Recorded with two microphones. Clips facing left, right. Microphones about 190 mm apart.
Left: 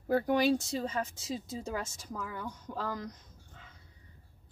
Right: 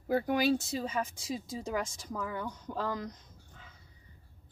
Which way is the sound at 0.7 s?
5° right (ahead or behind).